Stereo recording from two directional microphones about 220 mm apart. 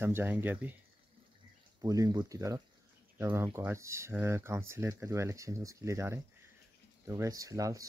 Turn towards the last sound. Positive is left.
turn(degrees=-15)  # may be behind; listen again after turning